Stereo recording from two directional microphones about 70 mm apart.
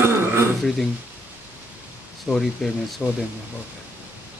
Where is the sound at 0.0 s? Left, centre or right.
Right.